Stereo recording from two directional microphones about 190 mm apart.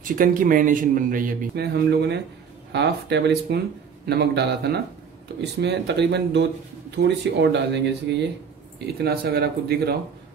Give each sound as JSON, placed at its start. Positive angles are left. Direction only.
{"t": 0.0, "sound": "speech", "side_deg": -45}